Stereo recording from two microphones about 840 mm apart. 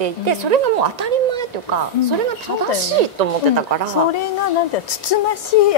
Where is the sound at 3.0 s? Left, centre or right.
Right.